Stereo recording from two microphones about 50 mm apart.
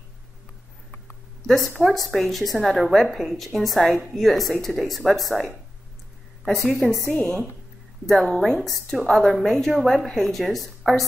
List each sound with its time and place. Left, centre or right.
1.5 s a woman's voice: centre
7.1 s a woman's voice: centre
8.1 s a woman's voice: centre